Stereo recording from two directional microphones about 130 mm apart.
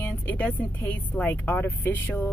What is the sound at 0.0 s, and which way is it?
Speech, 10° left (ahead or behind).